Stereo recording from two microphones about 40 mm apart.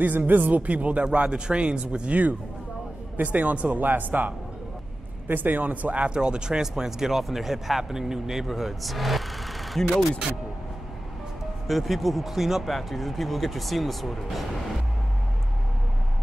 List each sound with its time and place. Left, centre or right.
0.0 s a man's voice: right
3.8 s a man's voice: right
5.3 s a man's voice: right
6.0 s speech: right; by 9.2 s centre
11.6 s speech: centre